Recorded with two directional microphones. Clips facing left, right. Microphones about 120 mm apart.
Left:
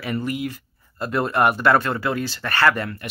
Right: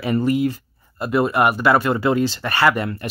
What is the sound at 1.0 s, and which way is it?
Speech, 10° right (ahead or behind).